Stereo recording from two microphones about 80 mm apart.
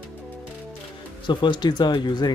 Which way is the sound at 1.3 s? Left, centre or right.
Left.